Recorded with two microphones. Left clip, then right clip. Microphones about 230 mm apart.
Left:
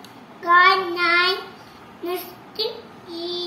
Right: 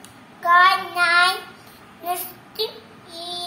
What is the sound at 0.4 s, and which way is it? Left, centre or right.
Child singing, right.